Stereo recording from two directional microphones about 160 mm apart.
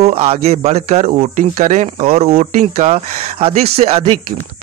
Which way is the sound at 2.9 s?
40° right (ahead or behind).